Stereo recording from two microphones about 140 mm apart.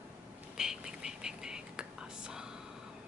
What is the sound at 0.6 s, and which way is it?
Whispering, 5° right (ahead or behind).